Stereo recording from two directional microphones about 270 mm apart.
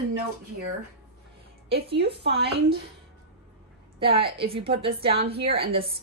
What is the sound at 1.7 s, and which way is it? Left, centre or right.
A woman's voice, right.